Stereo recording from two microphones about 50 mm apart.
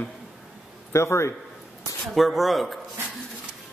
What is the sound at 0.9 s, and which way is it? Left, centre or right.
Speech, left.